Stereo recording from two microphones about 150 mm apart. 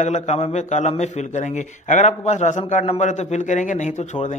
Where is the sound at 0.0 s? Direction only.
50° left (ahead or behind).